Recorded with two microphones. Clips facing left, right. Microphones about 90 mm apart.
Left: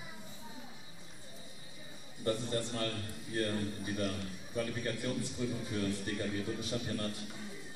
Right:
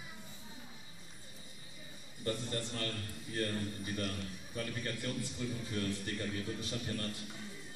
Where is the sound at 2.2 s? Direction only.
15° left (ahead or behind).